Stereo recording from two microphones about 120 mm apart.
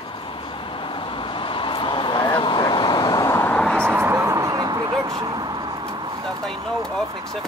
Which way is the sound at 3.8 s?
20° right (ahead or behind).